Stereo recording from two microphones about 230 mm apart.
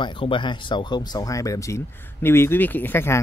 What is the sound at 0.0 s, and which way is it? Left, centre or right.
Speech, left.